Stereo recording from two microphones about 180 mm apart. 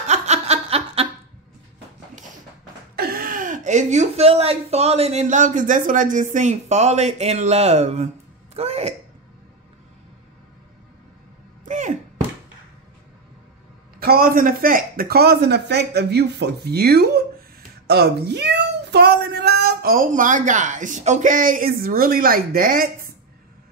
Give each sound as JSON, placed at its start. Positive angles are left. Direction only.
{"t": 0.0, "sound": "chuckle", "side_deg": -40}
{"t": 3.0, "sound": "speech", "side_deg": -55}
{"t": 11.6, "sound": "a sound", "side_deg": -45}
{"t": 13.9, "sound": "a man's voice", "side_deg": -55}